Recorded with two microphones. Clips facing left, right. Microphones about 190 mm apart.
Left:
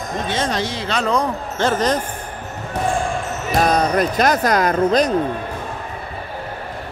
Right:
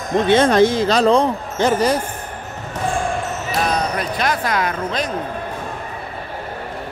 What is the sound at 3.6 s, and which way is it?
Speech, 45° left (ahead or behind).